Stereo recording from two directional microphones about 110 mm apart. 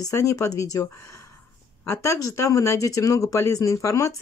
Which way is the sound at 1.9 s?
25° left (ahead or behind).